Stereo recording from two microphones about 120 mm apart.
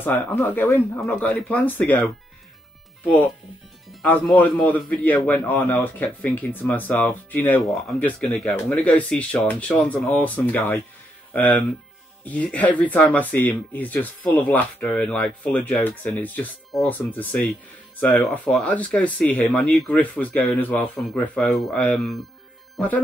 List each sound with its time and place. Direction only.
0.0 s speech: 15° left (ahead or behind)
4.0 s speech: 15° left (ahead or behind)
12.3 s speech: 10° left (ahead or behind)
16.7 s speech: centre (ahead or behind)
17.1 s speech: 15° left (ahead or behind)
21.0 s speech: 5° left (ahead or behind)